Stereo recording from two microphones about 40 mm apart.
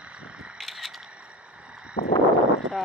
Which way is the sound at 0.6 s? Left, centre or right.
Centre.